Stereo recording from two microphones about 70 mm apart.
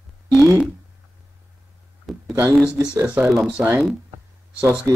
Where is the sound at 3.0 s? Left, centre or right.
Centre.